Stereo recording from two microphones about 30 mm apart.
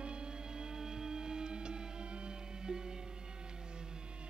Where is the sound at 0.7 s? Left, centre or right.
Right.